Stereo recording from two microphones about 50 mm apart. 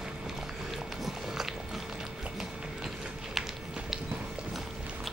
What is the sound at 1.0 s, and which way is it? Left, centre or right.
Biting, centre.